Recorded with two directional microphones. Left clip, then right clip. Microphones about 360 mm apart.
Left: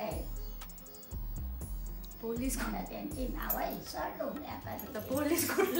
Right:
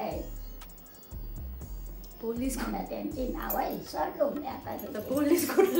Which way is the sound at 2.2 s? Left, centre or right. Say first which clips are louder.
Right 4 dB; centre.